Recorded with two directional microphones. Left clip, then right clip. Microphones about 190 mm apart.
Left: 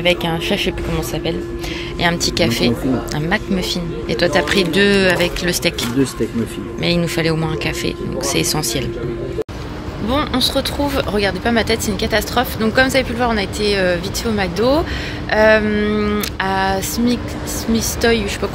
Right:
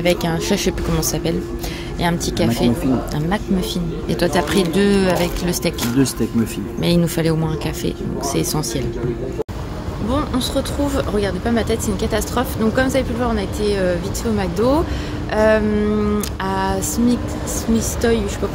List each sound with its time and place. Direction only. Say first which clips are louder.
0.0 s a woman's voice: left 2 dB; 15° right (ahead or behind)
2.0 s speech: left 4 dB; 10° right (ahead or behind)
6.8 s speech: left 1 dB; 20° right (ahead or behind)
10.0 s speech: left 4 dB; centre (ahead or behind)